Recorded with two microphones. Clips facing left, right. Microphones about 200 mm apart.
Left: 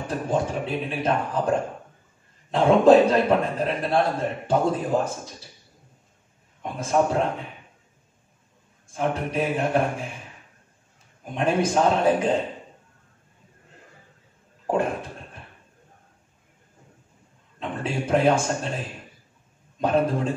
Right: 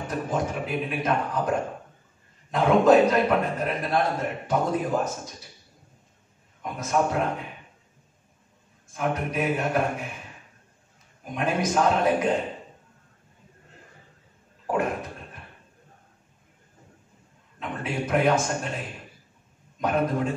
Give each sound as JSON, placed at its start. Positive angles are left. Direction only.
{"t": 0.1, "sound": "a man's voice", "side_deg": 30}
{"t": 2.5, "sound": "a man's voice", "side_deg": 30}
{"t": 6.6, "sound": "a man's voice", "side_deg": 30}
{"t": 8.9, "sound": "a man's voice", "side_deg": 30}
{"t": 11.3, "sound": "a man's voice", "side_deg": 30}
{"t": 14.7, "sound": "a sound", "side_deg": 30}
{"t": 17.6, "sound": "a man's voice", "side_deg": 30}
{"t": 19.8, "sound": "a man's voice", "side_deg": 30}